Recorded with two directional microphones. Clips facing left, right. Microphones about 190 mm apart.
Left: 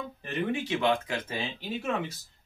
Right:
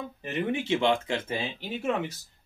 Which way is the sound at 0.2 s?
20° right (ahead or behind).